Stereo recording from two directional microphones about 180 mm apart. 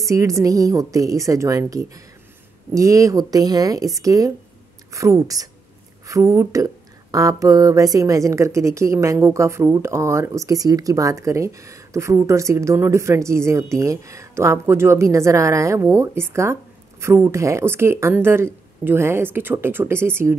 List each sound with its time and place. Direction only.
0.0 s speech: 20° right (ahead or behind)